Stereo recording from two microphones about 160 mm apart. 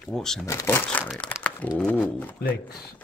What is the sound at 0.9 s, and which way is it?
Speech, 5° left (ahead or behind).